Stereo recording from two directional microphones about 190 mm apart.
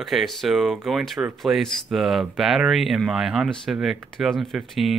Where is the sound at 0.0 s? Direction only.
Centre (ahead or behind).